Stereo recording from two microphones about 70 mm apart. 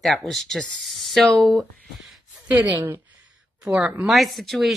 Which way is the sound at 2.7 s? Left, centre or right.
Right.